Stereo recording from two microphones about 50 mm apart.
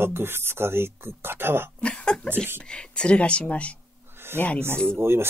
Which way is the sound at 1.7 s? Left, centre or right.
Left.